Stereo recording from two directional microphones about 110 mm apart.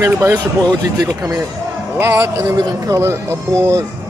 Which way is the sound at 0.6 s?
35° right (ahead or behind).